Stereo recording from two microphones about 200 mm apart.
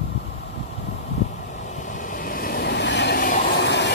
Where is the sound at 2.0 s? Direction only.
45° left (ahead or behind).